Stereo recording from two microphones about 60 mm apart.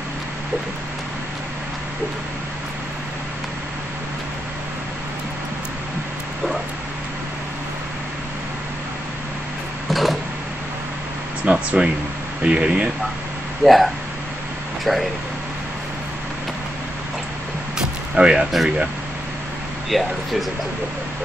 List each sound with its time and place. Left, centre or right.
9.8 s a sound: centre
11.4 s speech: centre
13.6 s speech: centre
14.9 s speech: centre
17.7 s a sound: centre
19.9 s speech: centre